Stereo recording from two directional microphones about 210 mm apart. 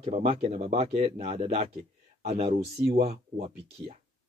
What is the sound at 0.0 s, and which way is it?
Speech, 30° right (ahead or behind).